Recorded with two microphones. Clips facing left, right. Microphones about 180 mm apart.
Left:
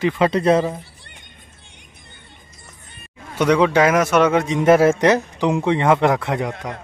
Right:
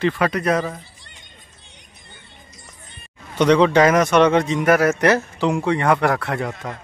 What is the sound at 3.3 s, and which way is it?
Speech, 5° left (ahead or behind).